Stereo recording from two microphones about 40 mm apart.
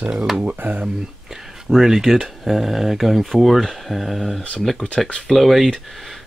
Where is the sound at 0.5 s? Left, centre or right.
Right.